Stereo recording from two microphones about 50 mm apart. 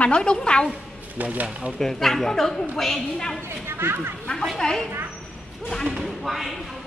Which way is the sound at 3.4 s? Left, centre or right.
Right.